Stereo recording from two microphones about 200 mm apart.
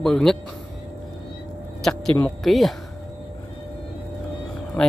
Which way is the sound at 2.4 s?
Centre (ahead or behind).